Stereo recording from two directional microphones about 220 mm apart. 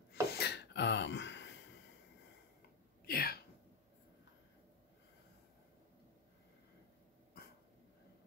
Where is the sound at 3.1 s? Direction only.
45° left (ahead or behind).